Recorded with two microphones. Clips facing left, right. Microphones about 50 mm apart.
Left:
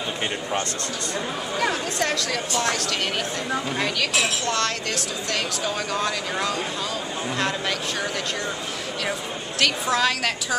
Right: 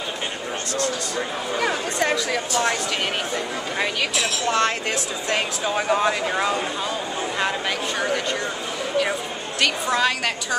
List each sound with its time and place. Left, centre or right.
1.6 s speech: centre
9.6 s a woman's voice: centre